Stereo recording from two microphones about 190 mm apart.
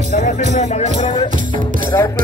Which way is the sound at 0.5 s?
35° left (ahead or behind).